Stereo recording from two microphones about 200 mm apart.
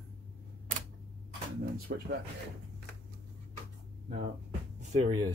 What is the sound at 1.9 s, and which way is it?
Speech, 55° right (ahead or behind).